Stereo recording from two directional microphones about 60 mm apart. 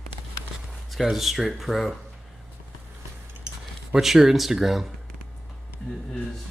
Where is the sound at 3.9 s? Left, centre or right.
Centre.